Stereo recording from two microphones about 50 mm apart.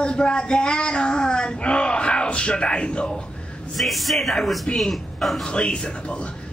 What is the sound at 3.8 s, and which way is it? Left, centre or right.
Speech, centre.